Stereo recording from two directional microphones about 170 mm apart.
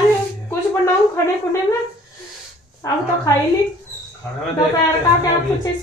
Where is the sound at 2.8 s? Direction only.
20° left (ahead or behind).